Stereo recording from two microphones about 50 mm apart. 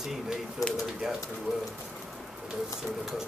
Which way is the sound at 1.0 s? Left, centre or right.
Centre.